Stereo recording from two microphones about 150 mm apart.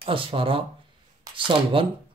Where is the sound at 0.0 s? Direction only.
35° right (ahead or behind).